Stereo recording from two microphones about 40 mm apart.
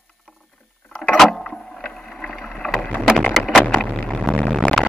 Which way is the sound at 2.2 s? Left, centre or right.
Centre.